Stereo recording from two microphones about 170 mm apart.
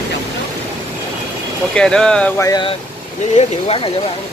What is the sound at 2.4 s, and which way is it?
Speech, 20° left (ahead or behind).